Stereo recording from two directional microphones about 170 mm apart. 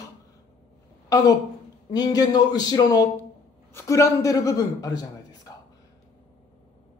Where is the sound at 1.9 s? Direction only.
20° left (ahead or behind).